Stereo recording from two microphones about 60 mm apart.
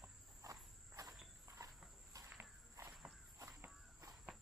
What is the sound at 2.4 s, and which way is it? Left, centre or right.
Walk, right.